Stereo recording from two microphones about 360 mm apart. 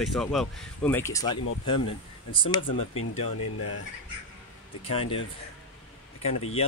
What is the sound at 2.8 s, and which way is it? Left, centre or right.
Speech, left.